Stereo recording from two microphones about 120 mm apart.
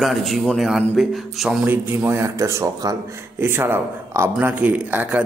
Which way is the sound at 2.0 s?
25° right (ahead or behind).